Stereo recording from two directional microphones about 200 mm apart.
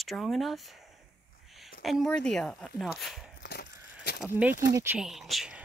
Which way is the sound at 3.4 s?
55° left (ahead or behind).